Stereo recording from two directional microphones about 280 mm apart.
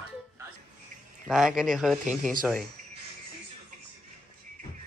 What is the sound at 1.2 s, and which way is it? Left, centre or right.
Speech, centre.